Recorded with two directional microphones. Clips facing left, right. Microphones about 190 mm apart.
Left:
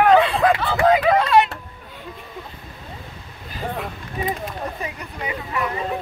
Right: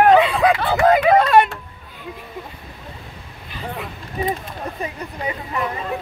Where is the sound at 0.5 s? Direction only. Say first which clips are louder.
Right 2 dB; 50° right (ahead or behind).